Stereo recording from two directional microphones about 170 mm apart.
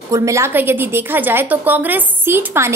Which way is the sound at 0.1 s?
20° right (ahead or behind).